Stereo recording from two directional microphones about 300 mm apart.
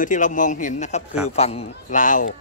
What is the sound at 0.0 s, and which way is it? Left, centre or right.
A man's voice, left.